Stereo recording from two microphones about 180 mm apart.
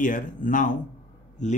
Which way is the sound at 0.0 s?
50° left (ahead or behind).